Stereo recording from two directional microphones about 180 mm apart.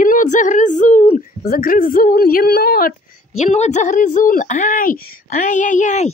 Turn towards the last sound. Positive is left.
turn(degrees=40)  # may be behind; listen again after turning